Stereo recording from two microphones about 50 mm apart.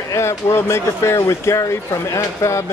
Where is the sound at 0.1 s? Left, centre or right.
Left.